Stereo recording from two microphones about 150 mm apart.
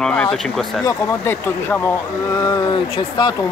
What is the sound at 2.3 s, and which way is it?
Speech, 30° left (ahead or behind).